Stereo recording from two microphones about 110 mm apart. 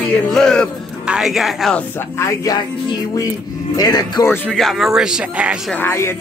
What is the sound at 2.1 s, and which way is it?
Music, 30° left (ahead or behind).